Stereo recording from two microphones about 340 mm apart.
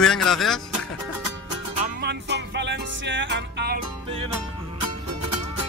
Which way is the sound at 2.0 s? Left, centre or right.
Right.